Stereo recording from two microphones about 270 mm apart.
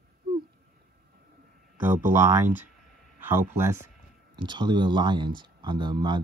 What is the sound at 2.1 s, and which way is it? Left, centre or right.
Speech, centre.